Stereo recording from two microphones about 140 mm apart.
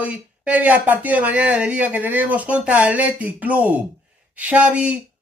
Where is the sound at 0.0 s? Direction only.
10° right (ahead or behind).